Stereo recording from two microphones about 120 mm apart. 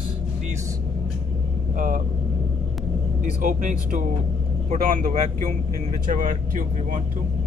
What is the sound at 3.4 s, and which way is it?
Speech, 90° right.